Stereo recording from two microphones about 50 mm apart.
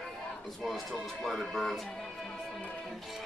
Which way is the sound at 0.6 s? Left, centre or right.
Centre.